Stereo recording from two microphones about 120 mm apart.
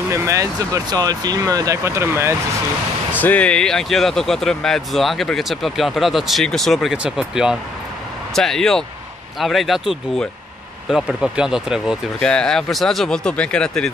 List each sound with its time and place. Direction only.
0.1 s speech: 25° right (ahead or behind)
3.2 s speech: 15° left (ahead or behind)
10.9 s speech: 5° right (ahead or behind)
12.2 s speech: 5° left (ahead or behind)